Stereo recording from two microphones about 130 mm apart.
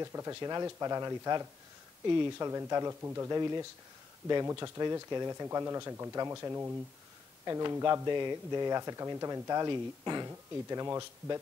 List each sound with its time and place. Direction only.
0.0 s speech: 25° right (ahead or behind)